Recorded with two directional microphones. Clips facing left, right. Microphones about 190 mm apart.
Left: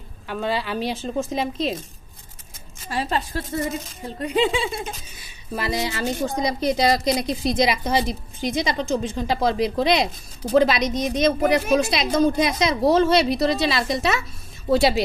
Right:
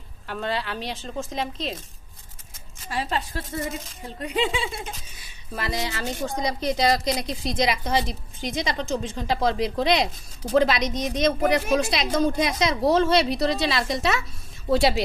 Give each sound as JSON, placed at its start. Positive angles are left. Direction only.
{"t": 0.3, "sound": "a woman's voice", "side_deg": 5}
{"t": 2.9, "sound": "a woman's voice", "side_deg": 40}
{"t": 5.6, "sound": "a woman's voice", "side_deg": 10}